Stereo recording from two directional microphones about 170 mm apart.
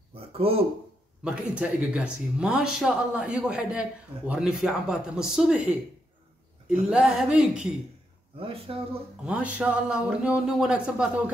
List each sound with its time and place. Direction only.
0.1 s a sound: 35° right (ahead or behind)
1.2 s speech: 5° right (ahead or behind)
8.4 s speech: 30° right (ahead or behind)
9.2 s speech: 10° right (ahead or behind)